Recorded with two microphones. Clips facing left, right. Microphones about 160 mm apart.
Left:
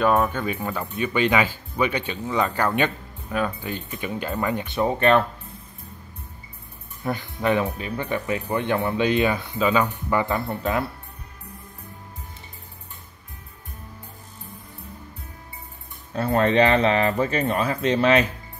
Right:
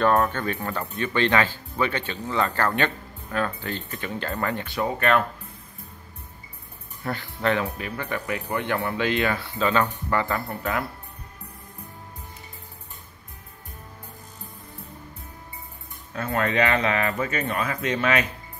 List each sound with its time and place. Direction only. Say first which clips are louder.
0.0 s speech: left 1 dB; 10° left (ahead or behind); by 5.2 s 25° left (ahead or behind)
7.0 s speech: left 2 dB; 20° left (ahead or behind)
16.1 s speech: left 5 dB; 35° left (ahead or behind)